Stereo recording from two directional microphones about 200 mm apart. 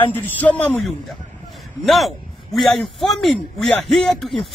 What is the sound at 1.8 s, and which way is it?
A man's voice, centre (ahead or behind).